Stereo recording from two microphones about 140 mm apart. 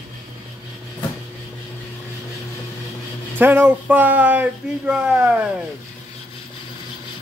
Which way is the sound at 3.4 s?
15° right (ahead or behind).